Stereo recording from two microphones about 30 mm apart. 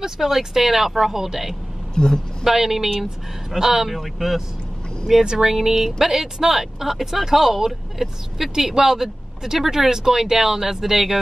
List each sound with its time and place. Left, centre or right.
0.2 s speech: centre
2.0 s speech: left
2.4 s speech: centre
3.9 s speech: centre
5.2 s speech: right
5.5 s speech: centre